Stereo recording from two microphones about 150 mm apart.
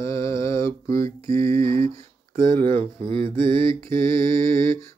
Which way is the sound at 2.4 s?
65° right (ahead or behind).